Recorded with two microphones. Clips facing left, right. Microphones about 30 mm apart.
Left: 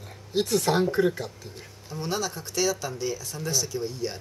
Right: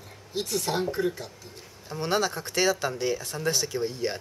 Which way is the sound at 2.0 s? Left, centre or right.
Right.